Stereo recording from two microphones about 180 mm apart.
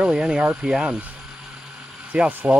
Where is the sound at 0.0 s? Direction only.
5° right (ahead or behind).